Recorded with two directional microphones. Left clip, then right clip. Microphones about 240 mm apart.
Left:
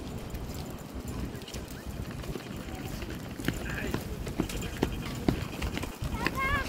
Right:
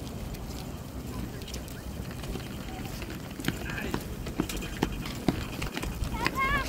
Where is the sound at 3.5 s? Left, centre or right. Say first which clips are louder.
Right 1 dB; right.